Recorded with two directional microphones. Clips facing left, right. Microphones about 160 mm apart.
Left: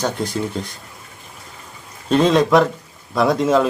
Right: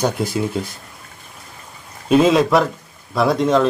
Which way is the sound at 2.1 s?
5° right (ahead or behind).